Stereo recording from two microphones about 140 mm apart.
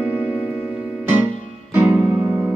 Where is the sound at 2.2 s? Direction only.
20° right (ahead or behind).